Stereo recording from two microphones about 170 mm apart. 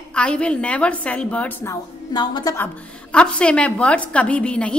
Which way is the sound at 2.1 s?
25° left (ahead or behind).